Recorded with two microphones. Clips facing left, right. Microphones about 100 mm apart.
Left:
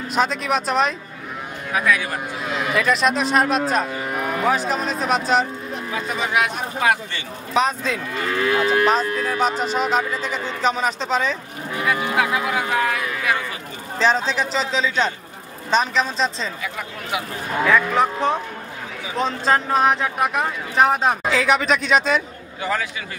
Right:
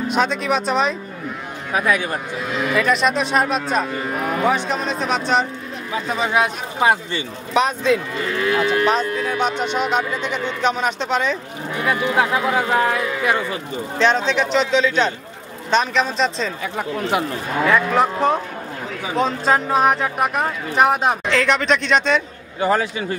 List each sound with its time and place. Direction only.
0.1 s speech: centre (ahead or behind)
1.7 s speech: 25° right (ahead or behind)
2.7 s speech: centre (ahead or behind)
6.0 s speech: 30° right (ahead or behind)
7.5 s speech: centre (ahead or behind)
9.5 s speech: 35° left (ahead or behind)
9.8 s speech: centre (ahead or behind)
11.9 s speech: 30° right (ahead or behind)
13.9 s speech: 5° left (ahead or behind)
16.6 s speech: 35° right (ahead or behind)
17.9 s speech: centre (ahead or behind)
22.6 s speech: 35° right (ahead or behind)